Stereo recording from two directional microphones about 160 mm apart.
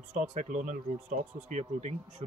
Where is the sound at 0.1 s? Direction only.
50° right (ahead or behind).